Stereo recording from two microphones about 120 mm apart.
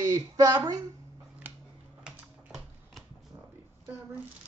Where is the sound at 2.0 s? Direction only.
Centre (ahead or behind).